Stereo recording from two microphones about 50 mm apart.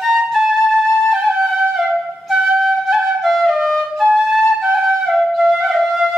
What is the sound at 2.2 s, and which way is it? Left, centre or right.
Flute, centre.